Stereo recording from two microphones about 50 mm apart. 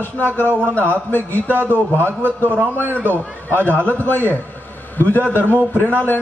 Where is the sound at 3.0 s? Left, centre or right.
Right.